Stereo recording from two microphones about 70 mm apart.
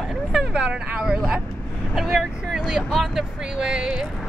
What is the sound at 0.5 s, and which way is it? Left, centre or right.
Speech, centre.